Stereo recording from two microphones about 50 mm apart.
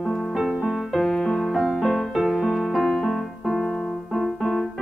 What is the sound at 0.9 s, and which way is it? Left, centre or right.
Music, centre.